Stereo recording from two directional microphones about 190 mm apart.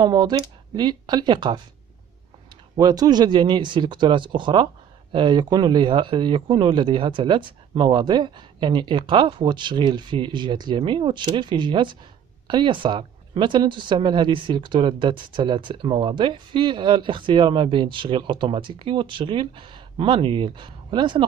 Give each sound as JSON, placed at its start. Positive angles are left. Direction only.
{"t": 0.0, "sound": "speech", "side_deg": -25}
{"t": 2.7, "sound": "speech", "side_deg": -20}